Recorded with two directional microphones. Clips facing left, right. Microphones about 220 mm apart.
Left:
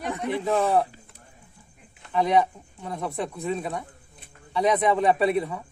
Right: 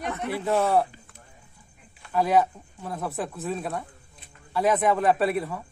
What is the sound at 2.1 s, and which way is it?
Speech, 5° right (ahead or behind).